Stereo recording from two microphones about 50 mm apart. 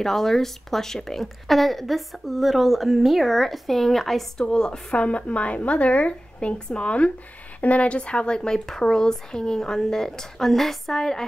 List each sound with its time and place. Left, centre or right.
0.0 s speech: centre
4.9 s a woman's voice: left; by 11.2 s centre